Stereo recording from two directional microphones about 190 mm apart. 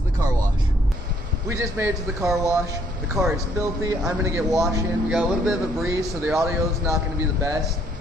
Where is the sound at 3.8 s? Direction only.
15° right (ahead or behind).